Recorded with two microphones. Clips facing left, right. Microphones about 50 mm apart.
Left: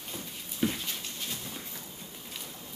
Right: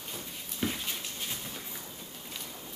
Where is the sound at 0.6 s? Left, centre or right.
Centre.